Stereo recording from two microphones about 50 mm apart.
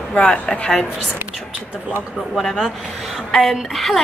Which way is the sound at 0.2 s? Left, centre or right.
Centre.